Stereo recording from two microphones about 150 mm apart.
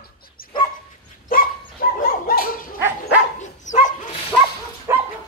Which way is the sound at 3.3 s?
55° left (ahead or behind).